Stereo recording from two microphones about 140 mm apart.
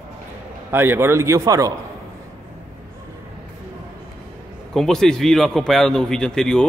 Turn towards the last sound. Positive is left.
turn(degrees=5)  # may be behind; listen again after turning